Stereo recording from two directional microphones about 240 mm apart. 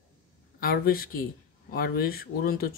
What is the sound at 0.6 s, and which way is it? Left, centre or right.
Speech, left.